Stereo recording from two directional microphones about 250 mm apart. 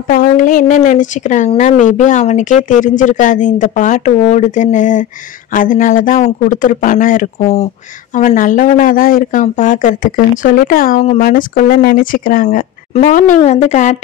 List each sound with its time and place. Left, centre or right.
0.1 s speech: left